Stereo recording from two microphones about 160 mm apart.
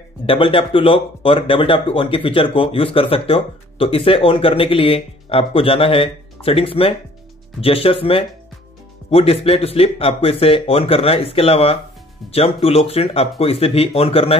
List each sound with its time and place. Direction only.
0.3 s speech: 35° left (ahead or behind)